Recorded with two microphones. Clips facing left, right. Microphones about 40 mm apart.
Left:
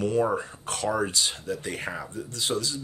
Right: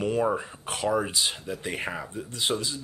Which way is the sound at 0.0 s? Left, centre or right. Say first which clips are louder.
Left 1 dB; centre.